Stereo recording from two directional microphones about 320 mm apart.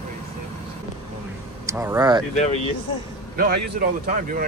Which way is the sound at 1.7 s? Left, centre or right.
Centre.